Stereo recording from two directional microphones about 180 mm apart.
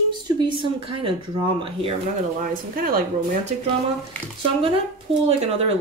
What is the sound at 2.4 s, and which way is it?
Speech, 50° right (ahead or behind).